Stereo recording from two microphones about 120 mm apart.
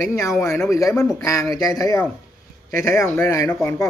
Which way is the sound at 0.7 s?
25° left (ahead or behind).